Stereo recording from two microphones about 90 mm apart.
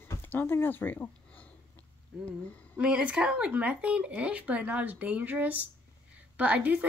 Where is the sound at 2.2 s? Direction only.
15° left (ahead or behind).